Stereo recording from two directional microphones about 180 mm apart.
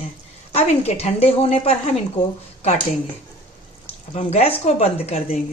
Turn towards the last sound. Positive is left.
turn(degrees=35)  # may be behind; listen again after turning